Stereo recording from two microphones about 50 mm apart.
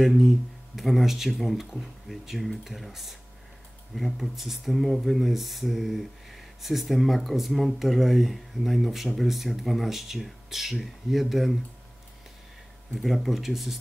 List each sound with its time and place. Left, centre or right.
0.0 s speech: centre
12.9 s speech: centre